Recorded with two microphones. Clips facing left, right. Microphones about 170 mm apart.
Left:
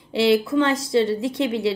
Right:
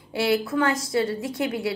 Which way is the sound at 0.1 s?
25° left (ahead or behind).